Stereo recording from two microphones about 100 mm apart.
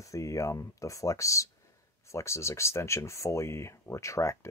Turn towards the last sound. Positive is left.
turn(degrees=30)  # may be behind; listen again after turning